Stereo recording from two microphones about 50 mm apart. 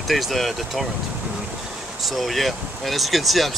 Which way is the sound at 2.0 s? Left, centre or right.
Centre.